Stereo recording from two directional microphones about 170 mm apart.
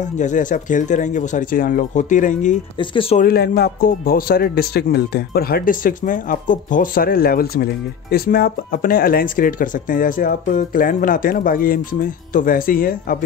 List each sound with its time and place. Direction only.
0.2 s speech: 50° left (ahead or behind)
2.8 s speech: 30° left (ahead or behind)
3.2 s speech: 65° left (ahead or behind)